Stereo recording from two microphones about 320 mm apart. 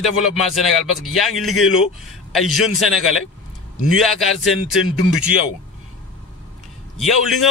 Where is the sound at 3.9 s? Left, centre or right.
Centre.